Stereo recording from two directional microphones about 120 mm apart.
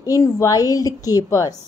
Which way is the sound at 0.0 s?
25° left (ahead or behind).